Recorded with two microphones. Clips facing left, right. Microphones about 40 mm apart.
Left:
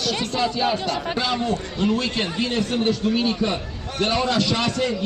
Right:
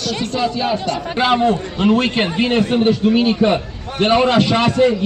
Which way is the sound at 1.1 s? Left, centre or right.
Right.